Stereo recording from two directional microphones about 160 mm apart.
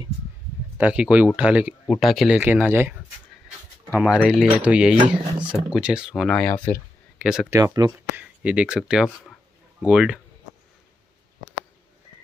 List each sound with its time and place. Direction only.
0.7 s speech: 10° right (ahead or behind)
7.2 s speech: 5° right (ahead or behind)
7.5 s speech: 20° right (ahead or behind)
8.2 s speech: 5° right (ahead or behind)